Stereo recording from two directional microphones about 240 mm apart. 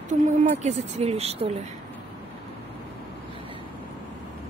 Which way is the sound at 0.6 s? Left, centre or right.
Right.